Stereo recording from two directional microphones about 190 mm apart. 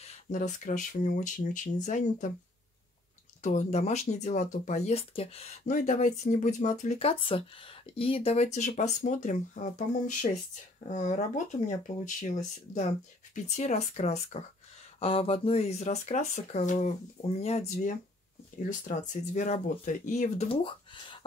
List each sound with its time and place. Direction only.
0.0 s speech: 40° left (ahead or behind)
3.4 s speech: 35° left (ahead or behind)
20.4 s speech: 25° left (ahead or behind)